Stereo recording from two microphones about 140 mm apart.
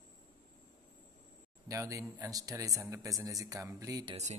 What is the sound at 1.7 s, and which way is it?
Speech, 20° right (ahead or behind).